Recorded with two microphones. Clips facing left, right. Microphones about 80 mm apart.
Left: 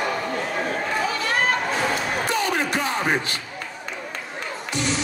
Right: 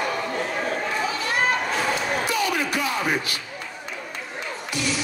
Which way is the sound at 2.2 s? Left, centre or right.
Left.